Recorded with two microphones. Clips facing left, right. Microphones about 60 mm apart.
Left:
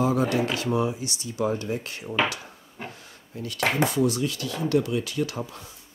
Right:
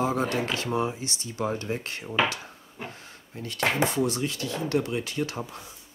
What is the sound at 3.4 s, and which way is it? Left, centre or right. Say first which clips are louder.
Speech: left 1 dB; right.